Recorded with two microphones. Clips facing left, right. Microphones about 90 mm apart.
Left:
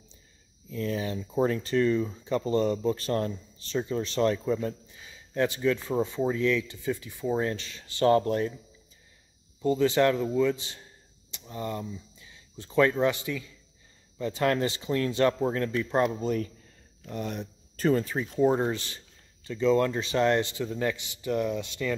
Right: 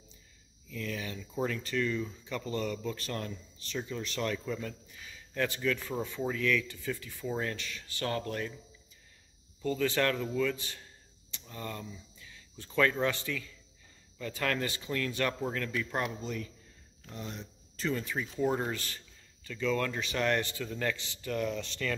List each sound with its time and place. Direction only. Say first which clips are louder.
0.7 s speech: left 7 dB; 30° left (ahead or behind)
9.6 s speech: left 7 dB; 20° left (ahead or behind); by 16.4 s 45° left (ahead or behind)
17.1 s speech: left 8 dB; 60° left (ahead or behind)
17.8 s speech: left 8 dB; 40° left (ahead or behind)
18.4 s speech: left 7 dB; 25° left (ahead or behind)